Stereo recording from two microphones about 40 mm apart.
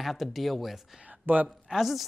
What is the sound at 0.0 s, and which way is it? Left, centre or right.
Speech, centre.